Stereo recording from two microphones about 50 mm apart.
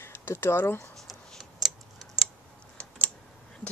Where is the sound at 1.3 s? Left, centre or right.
Centre.